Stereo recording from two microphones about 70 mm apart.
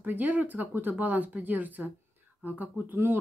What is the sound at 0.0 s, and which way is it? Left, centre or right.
Speech, right.